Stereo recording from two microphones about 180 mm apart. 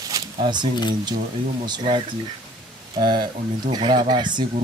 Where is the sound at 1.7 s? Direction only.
30° right (ahead or behind).